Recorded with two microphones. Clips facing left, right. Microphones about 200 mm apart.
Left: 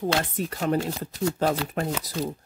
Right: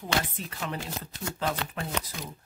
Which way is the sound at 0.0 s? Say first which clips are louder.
Left 6 dB; 45° left (ahead or behind).